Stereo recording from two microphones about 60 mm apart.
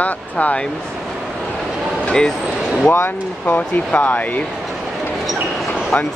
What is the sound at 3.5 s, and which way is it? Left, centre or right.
Speech, left.